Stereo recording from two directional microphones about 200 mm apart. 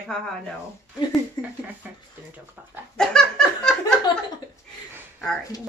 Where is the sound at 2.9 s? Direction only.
5° left (ahead or behind).